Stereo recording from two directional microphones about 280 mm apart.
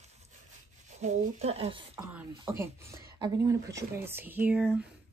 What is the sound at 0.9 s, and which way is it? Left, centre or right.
Speech, right.